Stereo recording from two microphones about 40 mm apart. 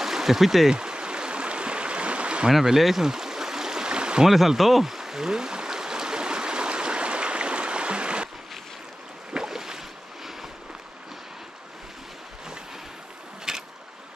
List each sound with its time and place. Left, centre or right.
0.0 s stream: centre
0.7 s stream: centre
2.5 s speech: centre
3.1 s stream: centre
4.3 s a sound: centre; by 8.3 s right
9.3 s boat: centre
13.5 s boat: centre